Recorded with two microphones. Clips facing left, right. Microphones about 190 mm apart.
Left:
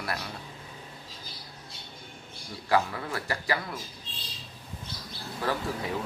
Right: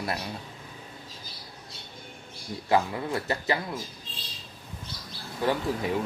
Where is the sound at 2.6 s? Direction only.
25° right (ahead or behind).